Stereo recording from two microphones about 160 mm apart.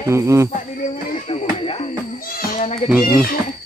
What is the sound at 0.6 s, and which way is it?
Music, 45° left (ahead or behind).